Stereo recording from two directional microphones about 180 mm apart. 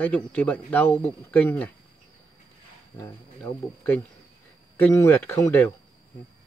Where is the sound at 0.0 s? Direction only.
10° left (ahead or behind).